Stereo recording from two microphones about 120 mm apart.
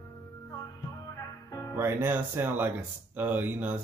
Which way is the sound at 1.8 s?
15° right (ahead or behind).